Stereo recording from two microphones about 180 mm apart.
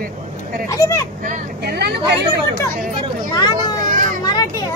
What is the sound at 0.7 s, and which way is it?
Speech, 20° left (ahead or behind).